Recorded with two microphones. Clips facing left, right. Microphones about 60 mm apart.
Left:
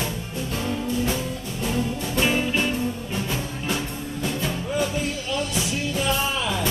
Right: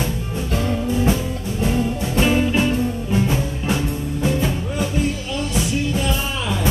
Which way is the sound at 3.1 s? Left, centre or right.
Centre.